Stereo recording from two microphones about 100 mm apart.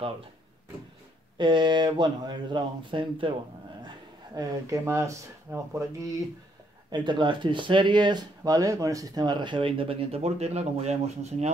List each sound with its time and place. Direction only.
1.4 s speech: 50° right (ahead or behind)
4.4 s speech: 35° right (ahead or behind)
6.9 s speech: 50° right (ahead or behind); by 11.5 s 90° right